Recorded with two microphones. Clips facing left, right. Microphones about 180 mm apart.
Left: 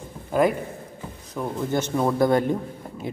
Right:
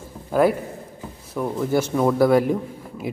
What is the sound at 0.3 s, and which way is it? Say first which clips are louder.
A man's voice: right 2 dB; 5° right (ahead or behind).